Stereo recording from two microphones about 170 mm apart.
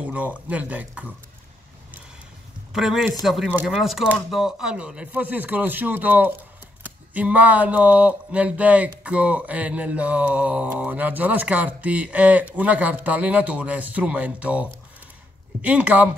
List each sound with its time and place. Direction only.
0.0 s speech: 10° right (ahead or behind)
2.7 s a man's voice: centre (ahead or behind)